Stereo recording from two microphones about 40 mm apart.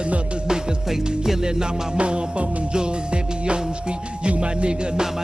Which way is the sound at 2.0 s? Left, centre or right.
Right.